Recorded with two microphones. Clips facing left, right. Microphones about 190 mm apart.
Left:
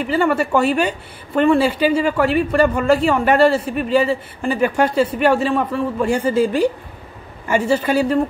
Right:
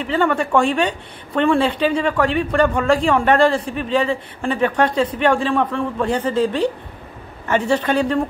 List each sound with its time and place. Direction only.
0.0 s a woman's voice: 5° left (ahead or behind)